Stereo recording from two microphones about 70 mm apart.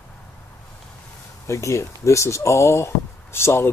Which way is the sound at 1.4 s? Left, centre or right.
Left.